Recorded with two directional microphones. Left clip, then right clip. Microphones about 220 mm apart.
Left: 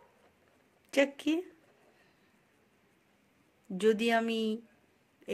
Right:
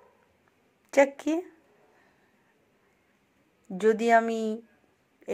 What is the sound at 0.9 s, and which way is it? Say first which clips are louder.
Speech: right 6 dB; 15° left (ahead or behind).